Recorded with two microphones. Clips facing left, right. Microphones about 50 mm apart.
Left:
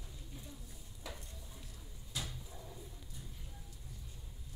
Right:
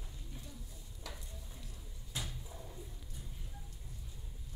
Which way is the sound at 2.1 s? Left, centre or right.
Right.